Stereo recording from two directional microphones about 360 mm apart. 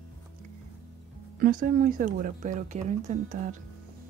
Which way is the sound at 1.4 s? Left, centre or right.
Right.